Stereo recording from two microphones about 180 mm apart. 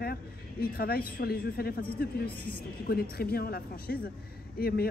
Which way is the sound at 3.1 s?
60° left (ahead or behind).